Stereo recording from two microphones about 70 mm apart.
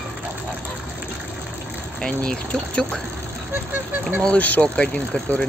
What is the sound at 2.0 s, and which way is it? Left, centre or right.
Speech, centre.